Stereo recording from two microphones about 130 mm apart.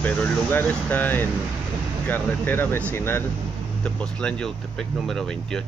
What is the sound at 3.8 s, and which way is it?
Speech, 5° left (ahead or behind).